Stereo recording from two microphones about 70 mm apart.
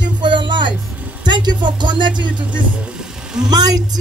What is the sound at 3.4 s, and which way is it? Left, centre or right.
Speech, right.